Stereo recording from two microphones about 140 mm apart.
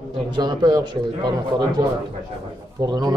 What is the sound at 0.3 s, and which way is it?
A man's voice, 30° right (ahead or behind).